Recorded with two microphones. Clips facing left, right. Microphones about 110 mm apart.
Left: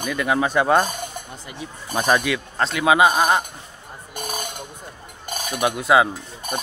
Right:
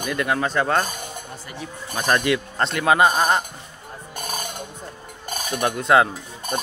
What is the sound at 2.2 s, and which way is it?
Speech, centre (ahead or behind).